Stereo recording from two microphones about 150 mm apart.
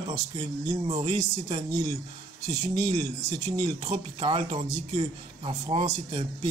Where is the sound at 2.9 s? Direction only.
40° right (ahead or behind).